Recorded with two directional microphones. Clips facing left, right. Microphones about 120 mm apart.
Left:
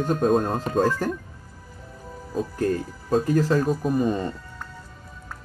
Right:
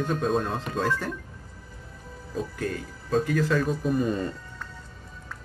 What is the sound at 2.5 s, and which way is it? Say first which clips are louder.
Speech: left 7 dB; 40° left (ahead or behind).